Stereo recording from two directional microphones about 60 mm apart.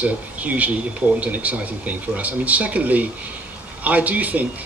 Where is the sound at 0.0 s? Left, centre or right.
Right.